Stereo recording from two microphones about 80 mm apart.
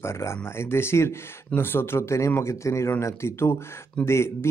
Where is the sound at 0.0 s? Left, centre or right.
Left.